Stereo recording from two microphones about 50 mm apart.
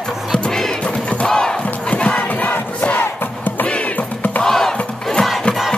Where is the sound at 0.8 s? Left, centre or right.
Left.